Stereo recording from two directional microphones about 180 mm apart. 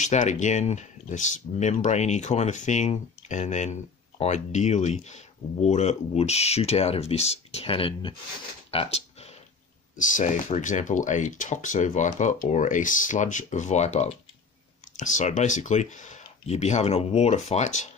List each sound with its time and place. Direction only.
0.0 s speech: 40° left (ahead or behind)
8.7 s a sound: 35° left (ahead or behind)
9.9 s speech: 45° left (ahead or behind)